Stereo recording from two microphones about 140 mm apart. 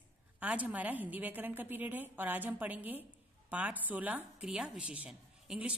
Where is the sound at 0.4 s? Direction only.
10° right (ahead or behind).